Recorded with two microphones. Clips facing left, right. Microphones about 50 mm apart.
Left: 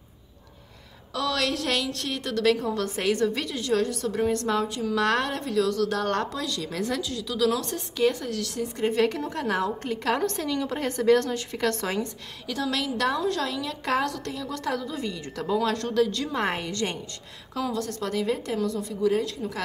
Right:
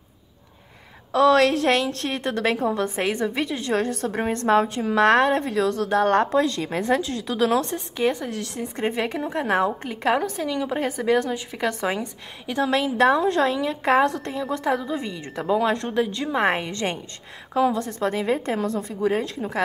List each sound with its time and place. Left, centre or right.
1.1 s a woman's voice: right
9.8 s a woman's voice: centre